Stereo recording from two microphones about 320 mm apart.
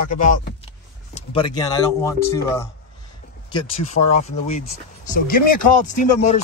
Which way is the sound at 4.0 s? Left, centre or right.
Left.